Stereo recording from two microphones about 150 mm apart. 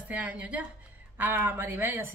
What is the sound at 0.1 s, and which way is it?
Speech, 10° right (ahead or behind).